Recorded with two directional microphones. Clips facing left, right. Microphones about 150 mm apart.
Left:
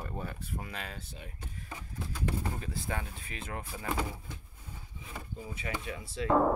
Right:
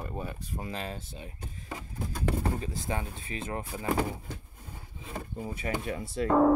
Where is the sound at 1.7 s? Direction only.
60° right (ahead or behind).